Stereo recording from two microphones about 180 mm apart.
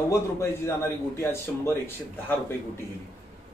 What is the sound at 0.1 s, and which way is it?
A man's voice, 15° left (ahead or behind).